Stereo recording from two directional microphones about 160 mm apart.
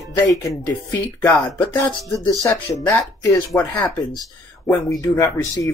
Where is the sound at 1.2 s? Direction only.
15° left (ahead or behind).